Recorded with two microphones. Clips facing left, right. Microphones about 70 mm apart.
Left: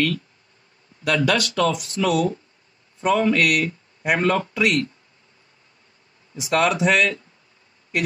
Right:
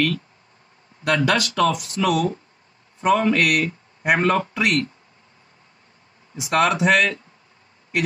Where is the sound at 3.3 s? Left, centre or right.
Right.